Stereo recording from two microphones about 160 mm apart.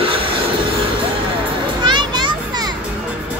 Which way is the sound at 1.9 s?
30° right (ahead or behind).